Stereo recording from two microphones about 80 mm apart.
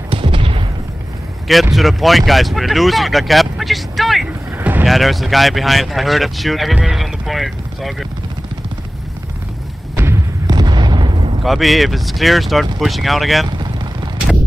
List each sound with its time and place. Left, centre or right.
0.3 s a sound: right
1.8 s speech: centre
4.6 s vehicle: right
4.8 s speech: centre
6.7 s speech: centre
7.0 s boat: centre
9.9 s a sound: right
10.4 s artillery fire: right
11.4 s speech: centre